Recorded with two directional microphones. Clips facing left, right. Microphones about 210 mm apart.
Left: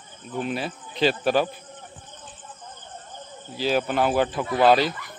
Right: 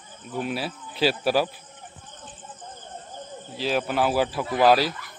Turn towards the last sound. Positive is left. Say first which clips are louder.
# left 1 dB
turn(degrees=-5)  # may be behind; listen again after turning